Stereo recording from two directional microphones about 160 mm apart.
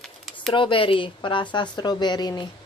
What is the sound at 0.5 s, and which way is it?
Speech, 30° left (ahead or behind).